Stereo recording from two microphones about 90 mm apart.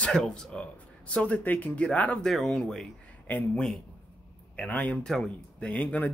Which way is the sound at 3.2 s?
15° left (ahead or behind).